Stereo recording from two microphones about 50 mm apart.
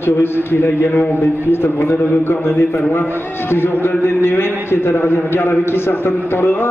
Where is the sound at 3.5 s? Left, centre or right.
Left.